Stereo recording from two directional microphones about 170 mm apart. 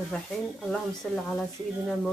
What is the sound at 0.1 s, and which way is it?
Speech, 5° left (ahead or behind).